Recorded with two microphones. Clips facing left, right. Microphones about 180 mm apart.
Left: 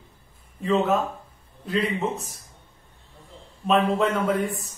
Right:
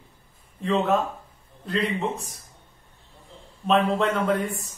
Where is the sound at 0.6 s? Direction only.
Centre (ahead or behind).